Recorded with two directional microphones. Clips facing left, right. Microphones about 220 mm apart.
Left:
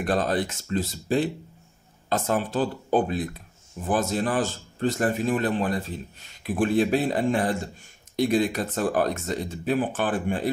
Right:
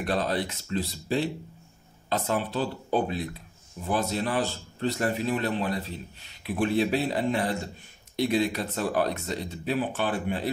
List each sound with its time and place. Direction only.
0.0 s a man's voice: 50° left (ahead or behind)